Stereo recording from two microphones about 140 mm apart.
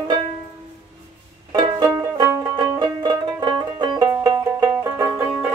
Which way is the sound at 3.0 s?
30° right (ahead or behind).